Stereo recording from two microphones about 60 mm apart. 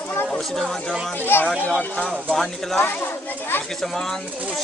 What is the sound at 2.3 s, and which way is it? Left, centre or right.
Speech, centre.